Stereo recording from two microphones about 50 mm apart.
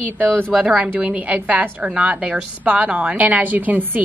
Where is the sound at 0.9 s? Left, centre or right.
Right.